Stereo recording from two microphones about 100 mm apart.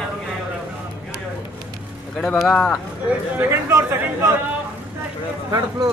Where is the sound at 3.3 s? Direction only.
25° right (ahead or behind).